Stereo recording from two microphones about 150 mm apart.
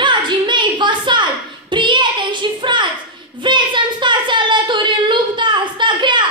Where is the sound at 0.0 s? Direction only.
30° right (ahead or behind).